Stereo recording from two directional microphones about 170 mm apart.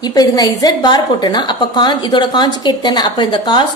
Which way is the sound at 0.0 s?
20° left (ahead or behind).